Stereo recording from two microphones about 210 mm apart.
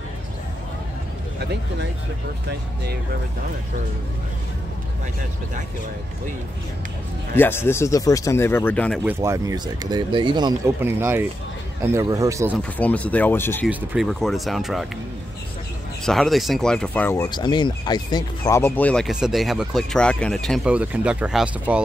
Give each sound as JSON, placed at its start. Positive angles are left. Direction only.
{"t": 1.4, "sound": "speech", "side_deg": -50}
{"t": 7.3, "sound": "speech", "side_deg": 10}
{"t": 9.0, "sound": "speech", "side_deg": -15}
{"t": 12.5, "sound": "speech", "side_deg": 5}
{"t": 13.7, "sound": "speech", "side_deg": -5}
{"t": 16.1, "sound": "speech", "side_deg": 0}